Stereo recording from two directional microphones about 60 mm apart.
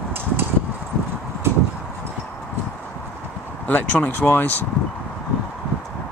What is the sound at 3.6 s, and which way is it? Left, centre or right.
Speech, left.